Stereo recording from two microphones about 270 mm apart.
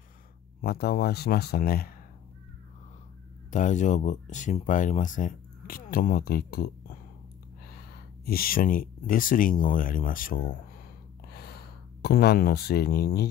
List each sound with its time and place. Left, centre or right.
0.6 s speech: left
3.4 s speech: left
8.3 s speech: left